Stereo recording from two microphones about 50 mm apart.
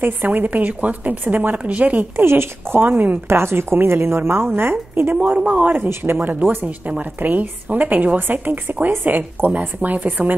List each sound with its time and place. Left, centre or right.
0.0 s a woman's voice: right
2.1 s a woman's voice: right
3.3 s a woman's voice: right
5.1 s speech: right
5.9 s a woman's voice: right